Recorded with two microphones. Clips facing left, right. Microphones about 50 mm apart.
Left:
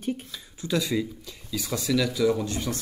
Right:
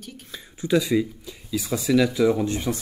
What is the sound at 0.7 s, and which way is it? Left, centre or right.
Speech, centre.